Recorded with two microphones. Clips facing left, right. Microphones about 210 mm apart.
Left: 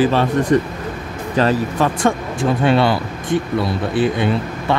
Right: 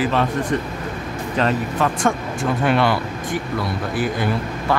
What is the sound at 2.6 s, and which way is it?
Speech, 30° left (ahead or behind).